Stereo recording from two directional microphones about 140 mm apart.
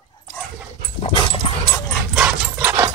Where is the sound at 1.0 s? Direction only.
40° left (ahead or behind).